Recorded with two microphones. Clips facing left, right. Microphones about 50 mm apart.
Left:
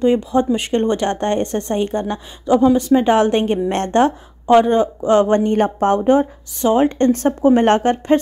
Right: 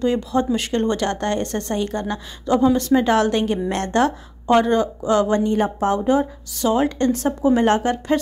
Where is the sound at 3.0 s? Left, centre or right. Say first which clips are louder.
Left 3 dB; left.